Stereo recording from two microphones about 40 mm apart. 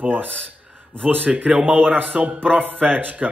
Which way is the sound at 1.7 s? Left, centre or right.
Right.